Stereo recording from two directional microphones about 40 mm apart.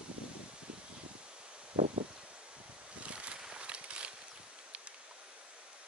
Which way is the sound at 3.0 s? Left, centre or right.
Right.